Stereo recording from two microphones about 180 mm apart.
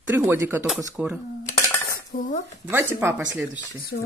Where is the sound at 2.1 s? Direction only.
45° left (ahead or behind).